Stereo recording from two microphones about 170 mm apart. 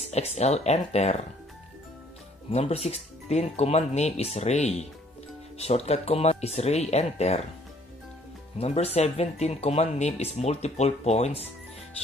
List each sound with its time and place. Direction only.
0.0 s speech: 40° left (ahead or behind)
2.5 s speech: 35° left (ahead or behind)
8.5 s speech: 35° left (ahead or behind)